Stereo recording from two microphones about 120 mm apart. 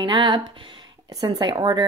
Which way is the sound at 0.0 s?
40° right (ahead or behind).